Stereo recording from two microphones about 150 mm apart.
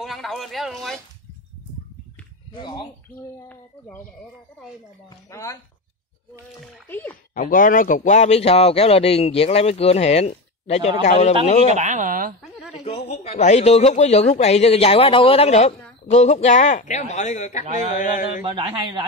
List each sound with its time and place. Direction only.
0.0 s speech: centre (ahead or behind)
2.6 s speech: 30° left (ahead or behind)
5.3 s speech: 20° left (ahead or behind)
6.9 s speech: 10° left (ahead or behind)
7.3 s speech: 65° left (ahead or behind); by 11.7 s 50° left (ahead or behind)
11.7 s speech: 50° right (ahead or behind)
12.4 s a sound: centre (ahead or behind)
12.8 s speech: 45° left (ahead or behind)
18.4 s a man's voice: 30° right (ahead or behind)